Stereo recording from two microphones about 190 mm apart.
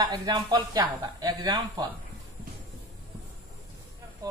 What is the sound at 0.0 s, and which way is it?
Speech, 20° right (ahead or behind).